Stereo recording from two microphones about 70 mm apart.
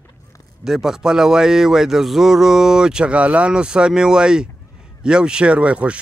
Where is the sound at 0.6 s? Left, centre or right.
Centre.